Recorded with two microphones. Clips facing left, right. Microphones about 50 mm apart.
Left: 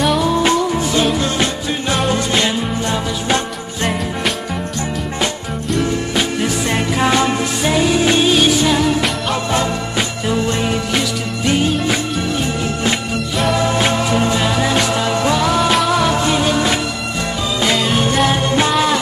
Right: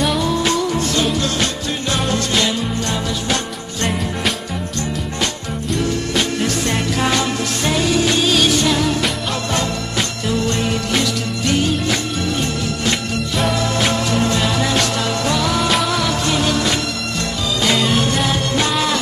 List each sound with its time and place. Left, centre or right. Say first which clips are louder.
0.0 s music: left 3 dB; centre
0.3 s music: left 3 dB; centre
5.7 s music: left 2 dB; centre
13.6 s music: left 3 dB; centre
18.3 s music: left 3 dB; centre